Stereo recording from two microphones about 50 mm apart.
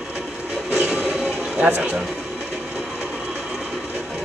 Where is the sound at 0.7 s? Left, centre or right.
Right.